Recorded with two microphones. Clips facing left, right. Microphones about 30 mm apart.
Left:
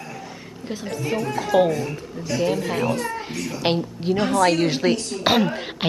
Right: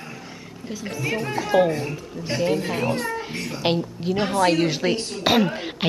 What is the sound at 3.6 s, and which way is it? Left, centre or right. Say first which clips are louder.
Speech: even; centre.